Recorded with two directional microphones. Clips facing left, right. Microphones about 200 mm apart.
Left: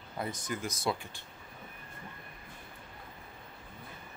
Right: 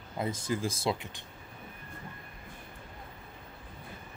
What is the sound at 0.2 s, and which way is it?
Speech, 25° right (ahead or behind).